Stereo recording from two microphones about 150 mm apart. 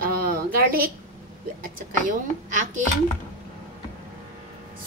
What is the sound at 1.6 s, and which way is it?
A woman's voice, 65° right (ahead or behind).